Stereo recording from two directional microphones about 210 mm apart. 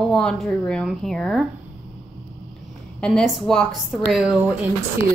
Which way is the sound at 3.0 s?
5° left (ahead or behind).